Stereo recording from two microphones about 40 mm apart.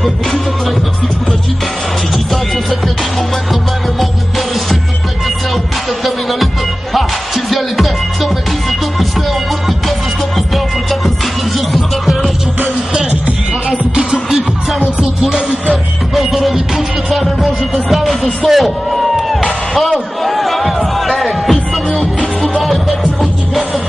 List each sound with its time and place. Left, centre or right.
6.0 s music: centre
11.7 s music: centre
13.7 s music: right
16.2 s speech: centre
20.2 s music: centre